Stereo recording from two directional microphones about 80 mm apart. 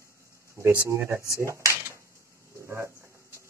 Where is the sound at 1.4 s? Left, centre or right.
Right.